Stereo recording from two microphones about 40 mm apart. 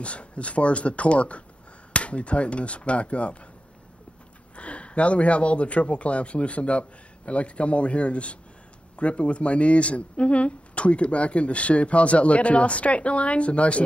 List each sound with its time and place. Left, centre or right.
0.0 s speech: left
4.6 s speech: left